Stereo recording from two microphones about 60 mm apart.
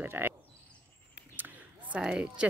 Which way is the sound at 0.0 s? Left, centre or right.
Right.